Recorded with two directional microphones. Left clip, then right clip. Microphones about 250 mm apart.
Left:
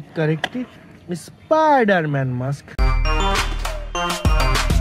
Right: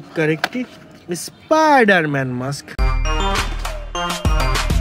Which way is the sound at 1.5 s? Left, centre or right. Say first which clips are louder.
Right 2 dB; centre.